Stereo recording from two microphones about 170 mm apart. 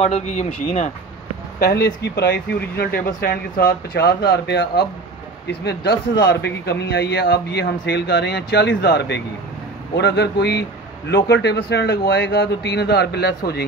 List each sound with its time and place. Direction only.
0.0 s speech: 40° left (ahead or behind)
1.6 s speech: 70° left (ahead or behind)
11.1 s speech: 85° left; by 13.7 s 70° left (ahead or behind)